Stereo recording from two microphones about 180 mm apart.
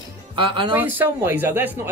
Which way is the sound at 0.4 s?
25° right (ahead or behind).